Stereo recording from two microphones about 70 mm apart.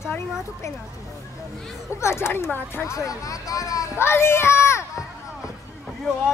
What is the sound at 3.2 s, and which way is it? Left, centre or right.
Speech, left.